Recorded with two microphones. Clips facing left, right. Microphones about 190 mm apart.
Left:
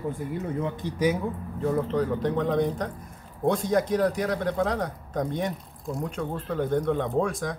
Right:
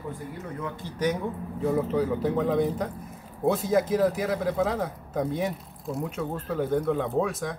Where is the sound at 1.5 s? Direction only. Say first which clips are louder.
Right 1 dB; 5° right (ahead or behind).